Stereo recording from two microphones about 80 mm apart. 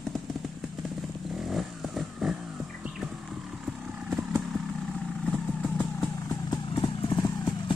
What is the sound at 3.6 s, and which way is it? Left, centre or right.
Vehicle, centre.